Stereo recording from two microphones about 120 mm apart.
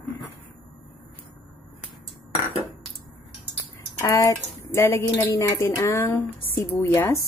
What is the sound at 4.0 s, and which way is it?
Speech, 20° left (ahead or behind).